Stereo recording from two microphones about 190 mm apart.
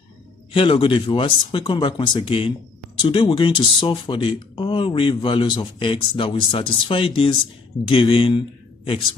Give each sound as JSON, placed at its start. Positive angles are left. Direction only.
{"t": 0.5, "sound": "a man's voice", "side_deg": 30}